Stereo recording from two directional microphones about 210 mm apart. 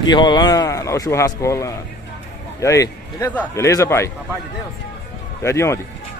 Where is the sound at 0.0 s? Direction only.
20° left (ahead or behind).